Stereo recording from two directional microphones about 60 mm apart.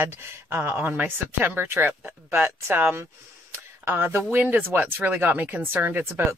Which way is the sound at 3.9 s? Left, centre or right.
Right.